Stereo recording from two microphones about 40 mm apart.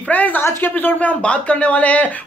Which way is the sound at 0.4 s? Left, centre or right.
Left.